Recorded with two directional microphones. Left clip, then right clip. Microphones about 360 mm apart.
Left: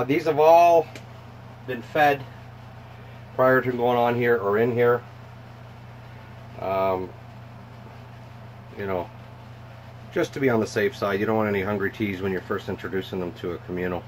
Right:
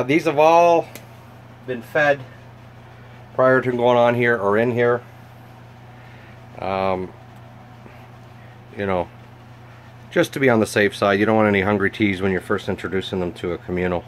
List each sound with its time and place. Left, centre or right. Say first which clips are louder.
0.0 s speech: right 3 dB; right
3.3 s speech: right 3 dB; right
6.6 s speech: right 2 dB; right
10.1 s speech: right 6 dB; right